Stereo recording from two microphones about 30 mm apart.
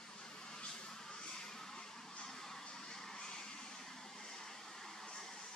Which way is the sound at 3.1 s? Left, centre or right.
Left.